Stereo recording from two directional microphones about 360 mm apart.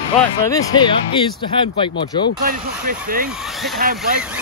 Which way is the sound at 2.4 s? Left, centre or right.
Right.